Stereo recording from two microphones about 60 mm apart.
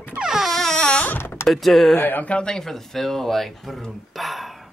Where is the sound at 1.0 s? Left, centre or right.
Left.